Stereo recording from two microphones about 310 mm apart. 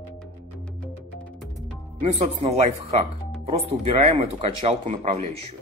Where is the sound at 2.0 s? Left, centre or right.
Right.